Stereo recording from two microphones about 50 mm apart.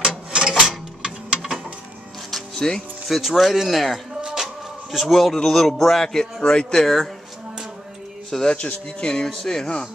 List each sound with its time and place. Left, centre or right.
0.3 s a sound: centre
2.3 s music: centre
3.1 s speech: centre
4.2 s a sound: centre
4.9 s speech: centre
8.3 s speech: centre
8.5 s speech: left